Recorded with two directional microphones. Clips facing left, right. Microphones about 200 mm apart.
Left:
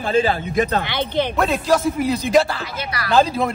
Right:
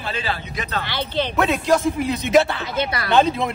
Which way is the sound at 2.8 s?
25° right (ahead or behind).